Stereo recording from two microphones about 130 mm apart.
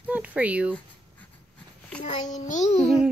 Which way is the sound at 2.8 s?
5° right (ahead or behind).